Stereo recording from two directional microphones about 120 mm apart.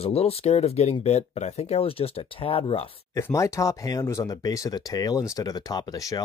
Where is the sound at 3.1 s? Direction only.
25° left (ahead or behind).